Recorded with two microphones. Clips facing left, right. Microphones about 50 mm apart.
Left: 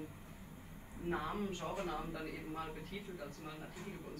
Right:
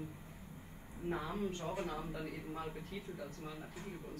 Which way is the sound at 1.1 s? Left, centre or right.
Centre.